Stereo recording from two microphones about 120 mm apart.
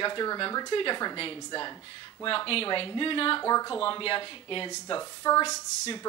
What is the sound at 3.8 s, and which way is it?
Speech, 45° left (ahead or behind).